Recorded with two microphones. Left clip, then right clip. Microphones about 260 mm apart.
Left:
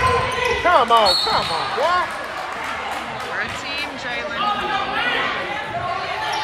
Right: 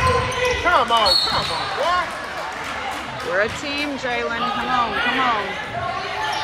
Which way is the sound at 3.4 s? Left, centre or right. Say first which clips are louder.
Right 4 dB; centre.